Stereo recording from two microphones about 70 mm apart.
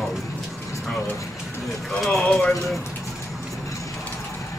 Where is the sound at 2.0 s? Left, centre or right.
Centre.